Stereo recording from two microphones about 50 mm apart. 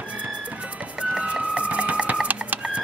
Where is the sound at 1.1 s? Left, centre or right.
Centre.